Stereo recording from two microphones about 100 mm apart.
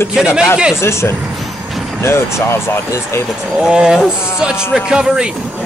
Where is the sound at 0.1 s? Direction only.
5° right (ahead or behind).